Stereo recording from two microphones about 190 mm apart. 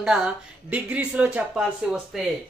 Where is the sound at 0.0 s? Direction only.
5° right (ahead or behind).